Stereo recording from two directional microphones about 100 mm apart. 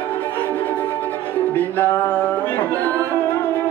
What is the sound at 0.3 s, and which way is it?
Music, 15° left (ahead or behind).